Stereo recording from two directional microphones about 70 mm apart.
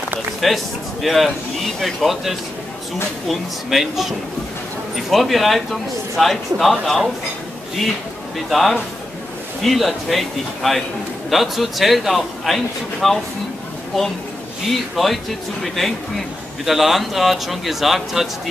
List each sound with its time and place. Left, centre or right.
0.4 s speech: centre
8.5 s speech: centre
14.7 s speech: centre